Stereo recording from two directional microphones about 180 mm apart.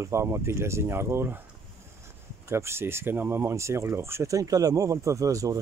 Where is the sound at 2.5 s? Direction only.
15° right (ahead or behind).